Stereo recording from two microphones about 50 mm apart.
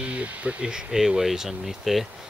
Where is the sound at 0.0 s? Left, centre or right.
Right.